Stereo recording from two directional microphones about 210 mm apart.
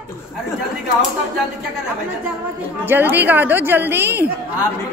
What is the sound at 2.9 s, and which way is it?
A woman's voice, 10° right (ahead or behind).